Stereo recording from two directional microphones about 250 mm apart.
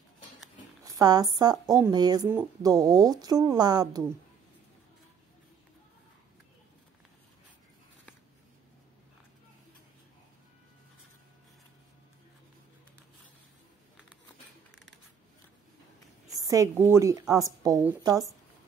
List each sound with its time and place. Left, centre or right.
0.8 s speech: centre
16.3 s a woman's voice: centre